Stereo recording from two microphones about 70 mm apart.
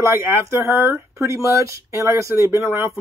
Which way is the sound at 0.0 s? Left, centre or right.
Right.